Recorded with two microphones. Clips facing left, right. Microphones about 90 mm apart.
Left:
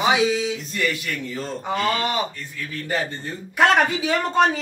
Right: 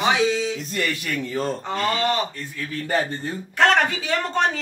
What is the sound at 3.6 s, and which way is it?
Speech, 10° left (ahead or behind).